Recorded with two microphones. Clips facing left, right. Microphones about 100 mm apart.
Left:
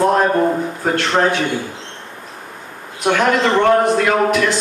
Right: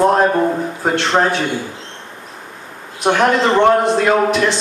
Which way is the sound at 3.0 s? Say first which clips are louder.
Right 1 dB; 25° right (ahead or behind).